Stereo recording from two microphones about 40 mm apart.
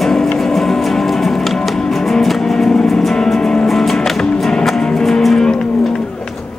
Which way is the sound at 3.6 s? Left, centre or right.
Centre.